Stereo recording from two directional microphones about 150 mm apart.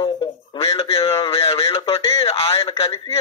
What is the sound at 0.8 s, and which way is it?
Speech, 40° left (ahead or behind).